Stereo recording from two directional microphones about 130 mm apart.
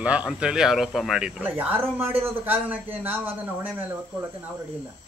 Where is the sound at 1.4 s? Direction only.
15° right (ahead or behind).